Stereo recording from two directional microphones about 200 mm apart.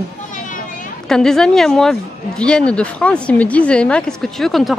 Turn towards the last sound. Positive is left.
turn(degrees=0)  # may be behind; listen again after turning